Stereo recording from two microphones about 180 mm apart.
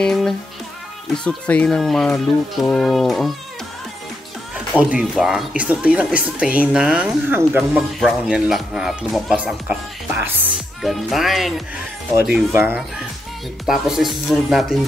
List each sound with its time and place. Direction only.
0.0 s a woman's voice: 5° left (ahead or behind)
4.7 s a woman's voice: 5° right (ahead or behind)